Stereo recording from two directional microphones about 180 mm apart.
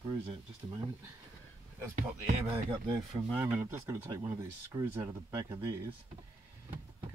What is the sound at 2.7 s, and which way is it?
Speech, 25° right (ahead or behind).